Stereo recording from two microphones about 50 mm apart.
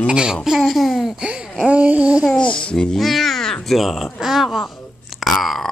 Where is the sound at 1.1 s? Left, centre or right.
Centre.